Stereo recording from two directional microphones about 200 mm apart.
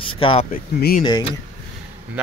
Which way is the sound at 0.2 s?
25° left (ahead or behind).